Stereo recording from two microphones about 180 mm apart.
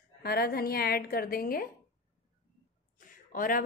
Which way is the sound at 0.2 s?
60° left (ahead or behind).